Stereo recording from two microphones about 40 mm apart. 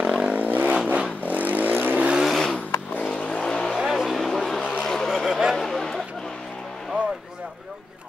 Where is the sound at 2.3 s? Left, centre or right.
Centre.